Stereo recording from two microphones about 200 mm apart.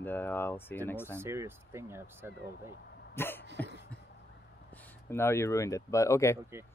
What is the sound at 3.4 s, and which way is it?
Cough, 60° right (ahead or behind).